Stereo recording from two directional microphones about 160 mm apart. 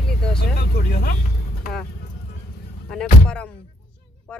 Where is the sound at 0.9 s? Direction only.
70° left (ahead or behind).